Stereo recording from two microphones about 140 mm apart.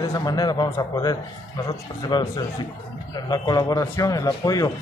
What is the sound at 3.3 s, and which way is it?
A man's voice, 25° left (ahead or behind).